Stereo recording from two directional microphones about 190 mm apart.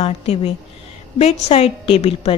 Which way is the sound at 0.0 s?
30° left (ahead or behind).